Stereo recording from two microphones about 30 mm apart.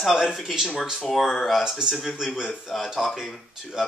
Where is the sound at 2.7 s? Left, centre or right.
Centre.